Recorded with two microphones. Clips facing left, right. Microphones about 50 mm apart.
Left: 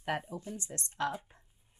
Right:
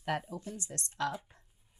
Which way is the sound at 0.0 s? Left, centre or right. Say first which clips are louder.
Even; centre.